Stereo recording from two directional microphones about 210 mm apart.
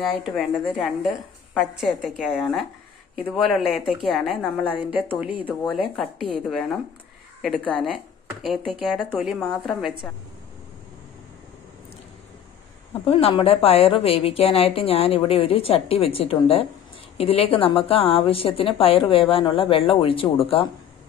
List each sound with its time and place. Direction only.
0.0 s a woman's voice: centre (ahead or behind)
6.4 s a woman's voice: centre (ahead or behind)
13.0 s a woman's voice: 25° left (ahead or behind)